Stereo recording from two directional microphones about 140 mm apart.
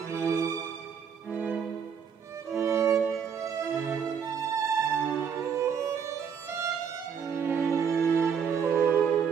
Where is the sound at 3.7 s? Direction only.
15° right (ahead or behind).